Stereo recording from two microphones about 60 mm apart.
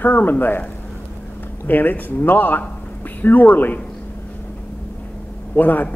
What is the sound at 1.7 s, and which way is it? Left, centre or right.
Speech, left.